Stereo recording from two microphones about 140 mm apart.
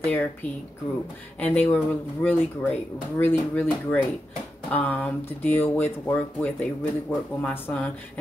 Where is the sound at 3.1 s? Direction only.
15° left (ahead or behind).